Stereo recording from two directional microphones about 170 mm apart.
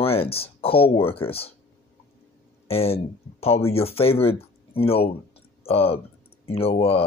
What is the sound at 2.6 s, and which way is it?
Speech, 35° left (ahead or behind).